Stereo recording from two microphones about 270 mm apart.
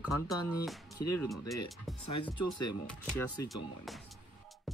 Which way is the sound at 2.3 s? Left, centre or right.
Left.